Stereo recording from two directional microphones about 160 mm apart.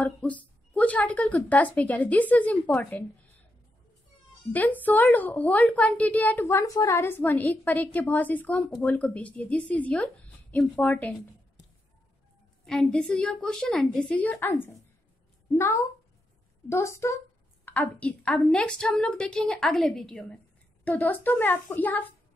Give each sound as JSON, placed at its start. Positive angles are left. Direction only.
{"t": 0.0, "sound": "speech", "side_deg": 10}
{"t": 4.5, "sound": "a woman's voice", "side_deg": 10}
{"t": 12.6, "sound": "a woman's voice", "side_deg": 5}